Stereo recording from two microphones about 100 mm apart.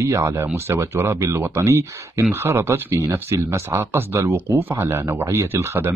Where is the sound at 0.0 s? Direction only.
30° right (ahead or behind).